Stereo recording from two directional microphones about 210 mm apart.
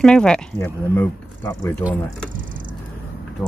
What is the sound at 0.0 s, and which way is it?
Speech, 5° left (ahead or behind).